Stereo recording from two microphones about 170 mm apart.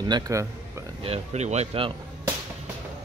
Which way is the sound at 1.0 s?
40° right (ahead or behind).